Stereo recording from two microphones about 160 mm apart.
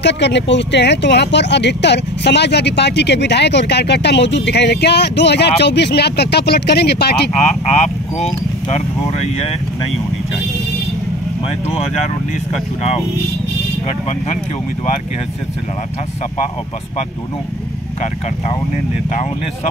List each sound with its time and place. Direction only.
0.0 s speech: 90° left
7.3 s speech: 40° left (ahead or behind)